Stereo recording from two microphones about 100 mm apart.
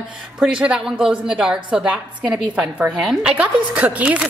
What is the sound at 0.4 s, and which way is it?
A woman's voice, 5° right (ahead or behind).